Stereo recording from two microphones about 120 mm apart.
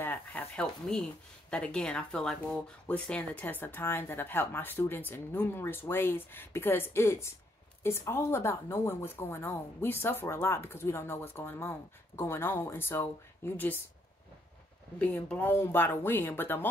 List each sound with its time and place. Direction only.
0.0 s a sound: 15° left (ahead or behind)
1.5 s speech: 5° left (ahead or behind)
15.0 s speech: 15° left (ahead or behind)